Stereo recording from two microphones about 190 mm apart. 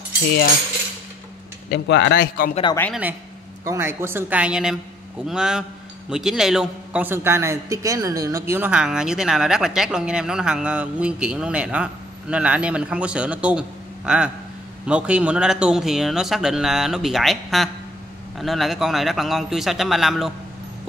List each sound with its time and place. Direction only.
1.7 s speech: 65° left (ahead or behind)
2.9 s a woman's voice: 10° right (ahead or behind)